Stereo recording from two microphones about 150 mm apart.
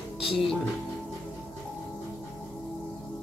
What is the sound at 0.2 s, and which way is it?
Music, 35° left (ahead or behind).